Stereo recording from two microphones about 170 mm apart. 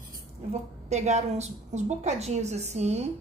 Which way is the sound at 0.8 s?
40° right (ahead or behind).